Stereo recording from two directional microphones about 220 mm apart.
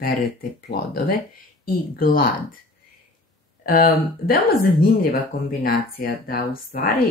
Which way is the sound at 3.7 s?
40° left (ahead or behind).